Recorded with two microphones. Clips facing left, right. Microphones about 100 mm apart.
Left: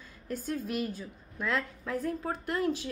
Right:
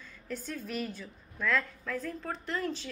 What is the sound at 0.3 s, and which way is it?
Speech, 40° left (ahead or behind).